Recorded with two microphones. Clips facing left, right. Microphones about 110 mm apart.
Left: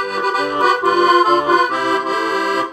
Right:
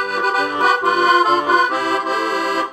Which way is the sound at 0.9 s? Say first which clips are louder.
Left 3 dB; 35° left (ahead or behind).